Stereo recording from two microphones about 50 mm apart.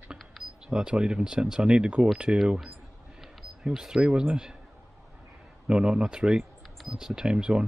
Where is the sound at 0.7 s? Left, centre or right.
Centre.